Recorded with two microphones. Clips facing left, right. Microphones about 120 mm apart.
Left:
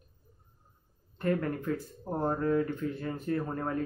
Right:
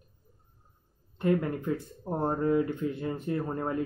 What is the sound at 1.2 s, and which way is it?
Speech, 15° right (ahead or behind).